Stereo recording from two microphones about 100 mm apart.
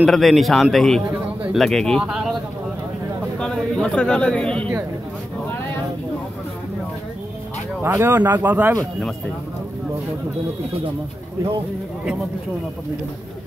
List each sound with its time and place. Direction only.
0.0 s speech: centre (ahead or behind)
1.1 s bird: 10° right (ahead or behind)
1.6 s speech: 5° left (ahead or behind)
3.3 s speech: 5° left (ahead or behind)
7.8 s speech: 25° right (ahead or behind)